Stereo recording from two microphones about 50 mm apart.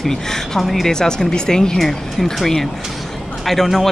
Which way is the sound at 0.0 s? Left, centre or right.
Centre.